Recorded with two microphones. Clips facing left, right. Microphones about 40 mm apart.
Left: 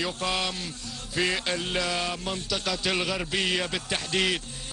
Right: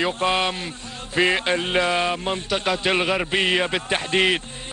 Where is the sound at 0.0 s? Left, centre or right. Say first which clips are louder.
Right 7 dB; right.